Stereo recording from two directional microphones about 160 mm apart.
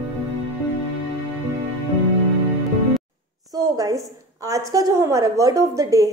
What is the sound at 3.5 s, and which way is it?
A woman's voice, 20° right (ahead or behind).